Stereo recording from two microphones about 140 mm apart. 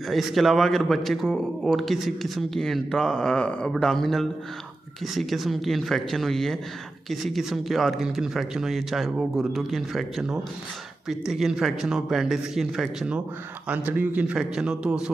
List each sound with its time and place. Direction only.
0.1 s a man's voice: centre (ahead or behind)